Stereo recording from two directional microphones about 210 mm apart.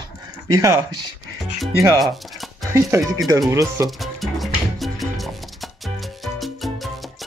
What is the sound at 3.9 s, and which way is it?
Music, centre (ahead or behind).